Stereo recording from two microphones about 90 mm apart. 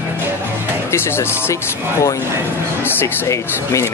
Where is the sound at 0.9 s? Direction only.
30° left (ahead or behind).